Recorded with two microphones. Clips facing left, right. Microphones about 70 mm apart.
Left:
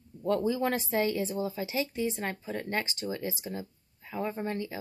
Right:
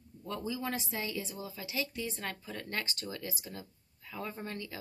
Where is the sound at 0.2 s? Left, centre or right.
Left.